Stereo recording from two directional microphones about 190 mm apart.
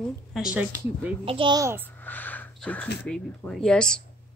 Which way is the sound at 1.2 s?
25° right (ahead or behind).